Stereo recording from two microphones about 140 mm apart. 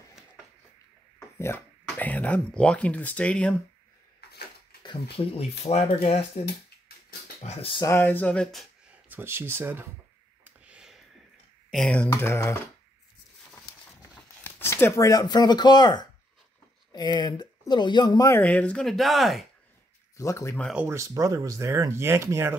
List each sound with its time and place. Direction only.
2.0 s speech: 10° left (ahead or behind)
4.8 s speech: 40° left (ahead or behind)
7.4 s speech: 40° left (ahead or behind)
7.8 s speech: 20° left (ahead or behind)
9.1 s speech: 15° right (ahead or behind)
10.4 s a sound: 10° right (ahead or behind)
11.7 s speech: 5° left (ahead or behind)
14.4 s speech: 15° left (ahead or behind)
18.4 s speech: 10° left (ahead or behind)
20.2 s speech: 20° left (ahead or behind)
20.7 s speech: 15° right (ahead or behind)